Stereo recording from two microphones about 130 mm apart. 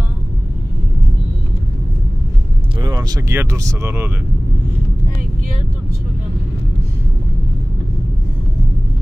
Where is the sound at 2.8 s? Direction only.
30° right (ahead or behind).